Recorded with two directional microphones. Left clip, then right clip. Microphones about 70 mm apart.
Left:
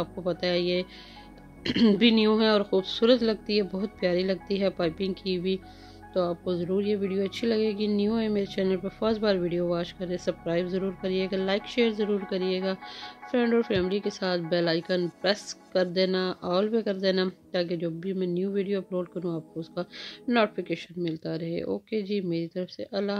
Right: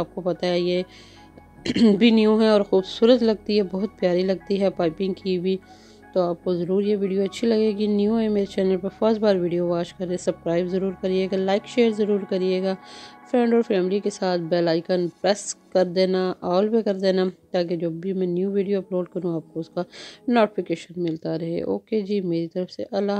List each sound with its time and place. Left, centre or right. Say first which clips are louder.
0.0 s speech: right 4 dB; right
1.6 s a woman's voice: right 4 dB; right
2.0 s speech: right 4 dB; right
8.6 s a woman's voice: right 5 dB; right
9.0 s a woman's voice: right 6 dB; right
19.6 s speech: right 5 dB; right
20.2 s speech: right 5 dB; right